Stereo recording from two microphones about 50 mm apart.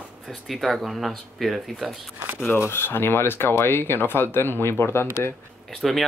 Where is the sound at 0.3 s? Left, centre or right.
Centre.